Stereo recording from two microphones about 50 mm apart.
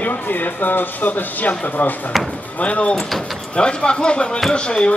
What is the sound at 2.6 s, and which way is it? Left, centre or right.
Speech, left.